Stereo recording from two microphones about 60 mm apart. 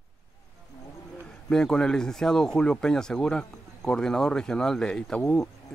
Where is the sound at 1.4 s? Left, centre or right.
Centre.